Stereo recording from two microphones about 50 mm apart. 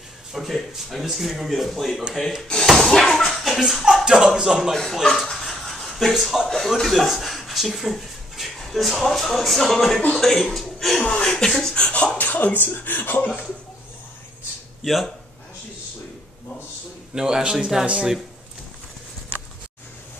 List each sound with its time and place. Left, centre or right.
0.3 s speech: centre
2.8 s a sound: centre
5.0 s a sound: centre
6.8 s speech: centre
11.0 s speech: centre
11.8 s speech: left
12.2 s speech: left
14.8 s speech: centre
17.1 s a sound: centre